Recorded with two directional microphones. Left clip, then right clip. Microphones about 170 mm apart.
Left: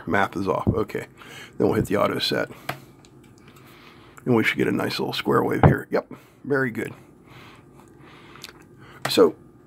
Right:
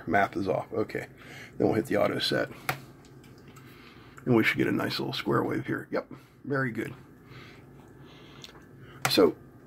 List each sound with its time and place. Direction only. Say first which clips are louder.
0.0 s speech: left 3 dB; 40° left (ahead or behind)
4.3 s speech: left 4 dB; 30° left (ahead or behind)